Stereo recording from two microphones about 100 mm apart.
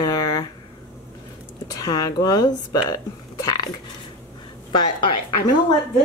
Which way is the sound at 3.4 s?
40° left (ahead or behind).